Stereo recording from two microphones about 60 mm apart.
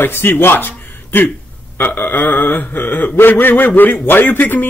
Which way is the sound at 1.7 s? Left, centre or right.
Left.